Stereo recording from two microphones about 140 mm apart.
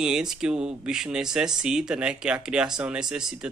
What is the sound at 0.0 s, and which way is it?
Speech, 5° right (ahead or behind).